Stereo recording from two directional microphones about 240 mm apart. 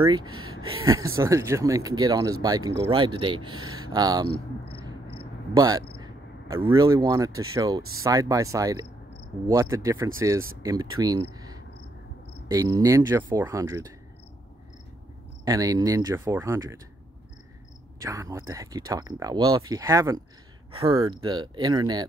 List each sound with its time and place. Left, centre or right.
0.0 s speech: centre
0.3 s speech: right
1.1 s speech: centre
5.6 s speech: centre
15.4 s speech: centre
18.0 s speech: centre